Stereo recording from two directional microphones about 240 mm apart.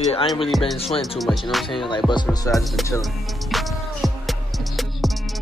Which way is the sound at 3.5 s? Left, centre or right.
Centre.